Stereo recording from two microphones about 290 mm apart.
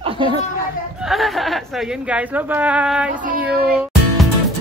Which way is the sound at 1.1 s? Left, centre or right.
Centre.